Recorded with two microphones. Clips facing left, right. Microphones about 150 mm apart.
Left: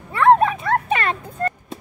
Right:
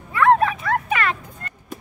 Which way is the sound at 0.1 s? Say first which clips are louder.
Left 2 dB; 30° left (ahead or behind).